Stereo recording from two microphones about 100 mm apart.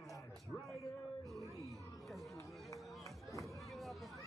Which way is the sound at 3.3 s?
30° left (ahead or behind).